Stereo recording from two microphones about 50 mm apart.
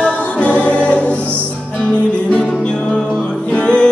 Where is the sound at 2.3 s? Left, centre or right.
Centre.